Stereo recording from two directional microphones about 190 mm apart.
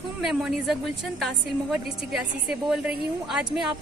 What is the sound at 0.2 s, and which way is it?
A woman's voice, centre (ahead or behind).